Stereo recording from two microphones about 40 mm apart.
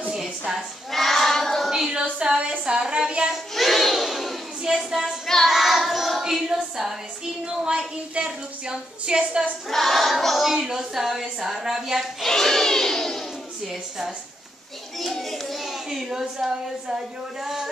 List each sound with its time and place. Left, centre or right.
0.1 s a sound: centre
0.9 s child singing: centre
2.2 s a sound: right
3.5 s crowd: centre
4.6 s a woman's voice: centre
5.2 s child singing: centre
5.5 s child singing: centre
6.2 s female singing: centre
7.6 s a woman's voice: right
9.7 s choir: centre
10.5 s speech: centre
12.0 s a child's voice: centre
15.0 s a child's voice: centre